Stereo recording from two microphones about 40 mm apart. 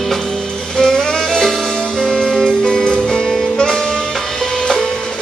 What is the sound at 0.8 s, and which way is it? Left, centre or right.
Music, centre.